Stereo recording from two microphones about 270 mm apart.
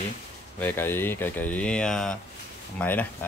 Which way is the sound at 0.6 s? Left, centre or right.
Centre.